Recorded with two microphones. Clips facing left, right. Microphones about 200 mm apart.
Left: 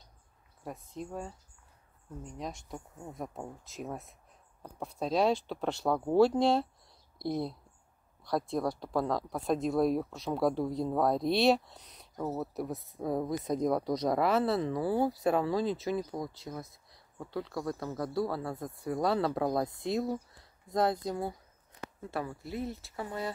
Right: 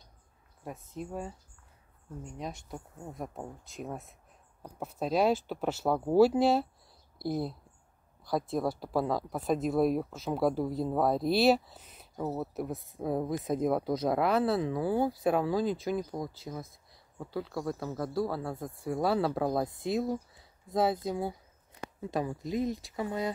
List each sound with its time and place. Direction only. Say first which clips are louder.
0.7 s speech: right 1 dB; 5° right (ahead or behind)
21.8 s speech: right 4 dB; 15° right (ahead or behind)